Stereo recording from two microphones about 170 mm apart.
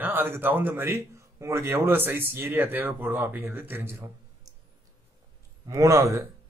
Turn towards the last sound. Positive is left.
turn(degrees=-15)  # may be behind; listen again after turning